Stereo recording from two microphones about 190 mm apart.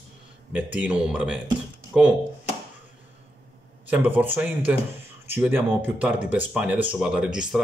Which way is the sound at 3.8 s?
10° right (ahead or behind).